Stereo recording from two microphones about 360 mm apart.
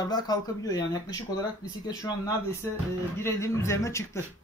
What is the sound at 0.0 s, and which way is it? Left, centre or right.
Speech, centre.